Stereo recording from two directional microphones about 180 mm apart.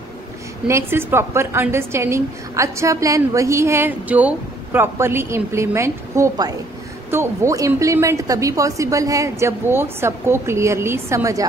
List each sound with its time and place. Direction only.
0.7 s a woman's voice: 15° right (ahead or behind)